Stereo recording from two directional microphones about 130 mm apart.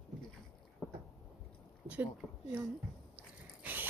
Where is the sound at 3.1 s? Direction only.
15° right (ahead or behind).